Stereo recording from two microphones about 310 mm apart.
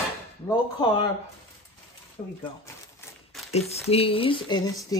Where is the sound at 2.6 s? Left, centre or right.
Centre.